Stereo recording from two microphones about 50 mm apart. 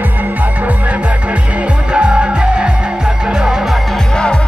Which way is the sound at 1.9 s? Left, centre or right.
Centre.